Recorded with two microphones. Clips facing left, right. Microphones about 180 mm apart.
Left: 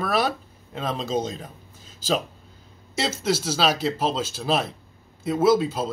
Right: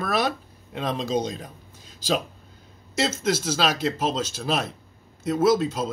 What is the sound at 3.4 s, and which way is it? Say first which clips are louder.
Speech: left 1 dB; 5° left (ahead or behind).